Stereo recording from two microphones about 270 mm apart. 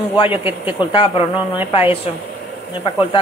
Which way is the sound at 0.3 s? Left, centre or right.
Centre.